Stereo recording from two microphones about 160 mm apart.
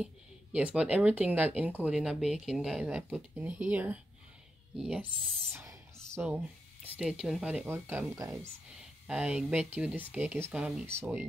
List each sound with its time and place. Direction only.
0.0 s speech: 10° right (ahead or behind)
5.5 s speech: 15° right (ahead or behind)
8.7 s speech: 5° right (ahead or behind)